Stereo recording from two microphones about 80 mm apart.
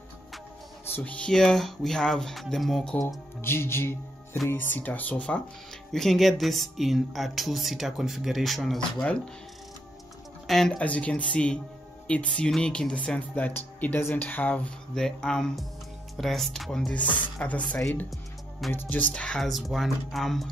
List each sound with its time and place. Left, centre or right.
0.8 s a sound: left
1.1 s speech: centre
3.3 s music: left
4.5 s speech: left
5.9 s speech: centre
8.7 s speech: centre
10.4 s speech: centre
10.8 s speech: centre
15.0 s speech: centre
17.4 s speech: centre
19.5 s speech: centre